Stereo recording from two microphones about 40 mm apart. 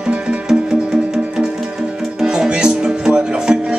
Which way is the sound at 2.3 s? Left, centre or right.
Right.